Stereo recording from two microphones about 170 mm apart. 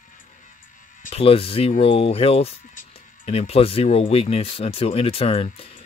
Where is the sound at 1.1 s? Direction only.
35° left (ahead or behind).